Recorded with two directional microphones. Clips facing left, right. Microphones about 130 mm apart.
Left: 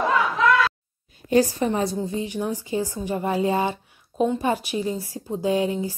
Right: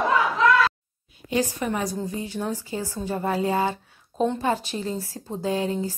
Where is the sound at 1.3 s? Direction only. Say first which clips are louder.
Left 5 dB; 35° left (ahead or behind).